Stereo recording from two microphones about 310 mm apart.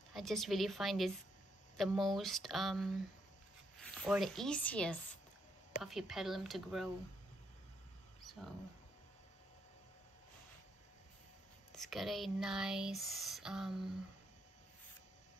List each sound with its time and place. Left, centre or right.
0.1 s speech: centre
8.2 s a sound: centre
11.7 s speech: centre